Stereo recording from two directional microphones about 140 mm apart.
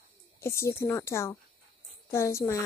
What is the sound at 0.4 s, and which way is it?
A woman's voice, 20° left (ahead or behind).